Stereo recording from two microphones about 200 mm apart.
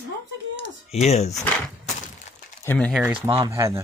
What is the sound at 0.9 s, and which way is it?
Speech, 35° left (ahead or behind).